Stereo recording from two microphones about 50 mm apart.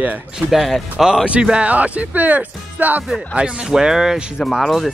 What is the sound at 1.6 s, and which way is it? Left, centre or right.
Speech, right.